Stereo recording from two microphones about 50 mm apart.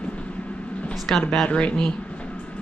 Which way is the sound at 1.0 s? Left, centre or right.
Centre.